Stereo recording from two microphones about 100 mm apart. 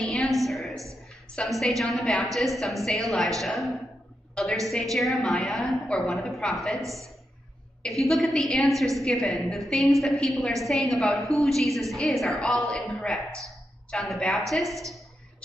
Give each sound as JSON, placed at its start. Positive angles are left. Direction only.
{"t": 0.0, "sound": "a sound", "side_deg": 0}
{"t": 1.3, "sound": "a woman's voice", "side_deg": 5}
{"t": 6.8, "sound": "a man's voice", "side_deg": -30}
{"t": 8.0, "sound": "a woman's voice", "side_deg": 0}